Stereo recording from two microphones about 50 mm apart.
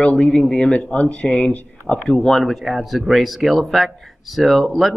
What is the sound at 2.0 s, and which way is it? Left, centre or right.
Speech, centre.